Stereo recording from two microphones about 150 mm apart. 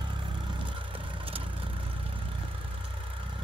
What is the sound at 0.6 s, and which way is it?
Vehicle, 35° right (ahead or behind).